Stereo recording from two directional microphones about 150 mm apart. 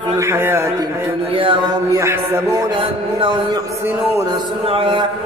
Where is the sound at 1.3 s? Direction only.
35° right (ahead or behind).